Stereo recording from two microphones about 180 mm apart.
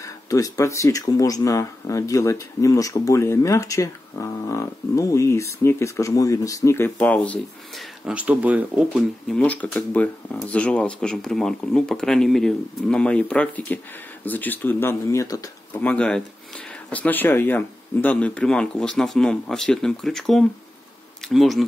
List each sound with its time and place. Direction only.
0.0 s speech: 20° left (ahead or behind)
8.0 s speech: 5° right (ahead or behind)
9.4 s speech: 10° left (ahead or behind)
15.8 s speech: 5° left (ahead or behind)